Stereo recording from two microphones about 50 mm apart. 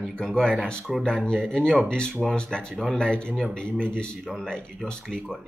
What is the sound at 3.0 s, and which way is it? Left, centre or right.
Speech, centre.